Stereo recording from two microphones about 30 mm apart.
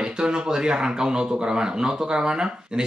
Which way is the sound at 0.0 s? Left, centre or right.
Right.